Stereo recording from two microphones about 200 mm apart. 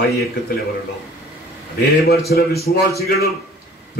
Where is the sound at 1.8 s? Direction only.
50° left (ahead or behind).